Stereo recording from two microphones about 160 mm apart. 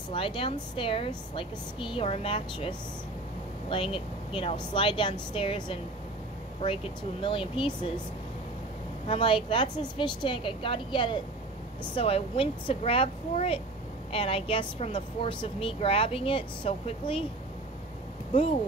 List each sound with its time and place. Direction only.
0.1 s a woman's voice: 35° left (ahead or behind)
6.6 s a woman's voice: 30° left (ahead or behind)
9.0 s a woman's voice: 35° left (ahead or behind)